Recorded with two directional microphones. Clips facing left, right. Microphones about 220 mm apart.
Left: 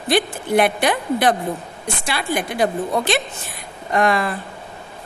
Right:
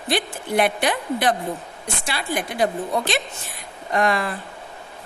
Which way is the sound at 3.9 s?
55° left (ahead or behind).